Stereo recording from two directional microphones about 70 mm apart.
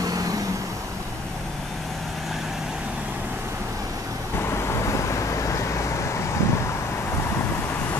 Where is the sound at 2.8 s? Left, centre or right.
Centre.